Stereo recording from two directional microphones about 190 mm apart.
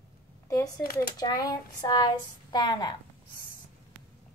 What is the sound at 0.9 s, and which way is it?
Speech, 20° left (ahead or behind).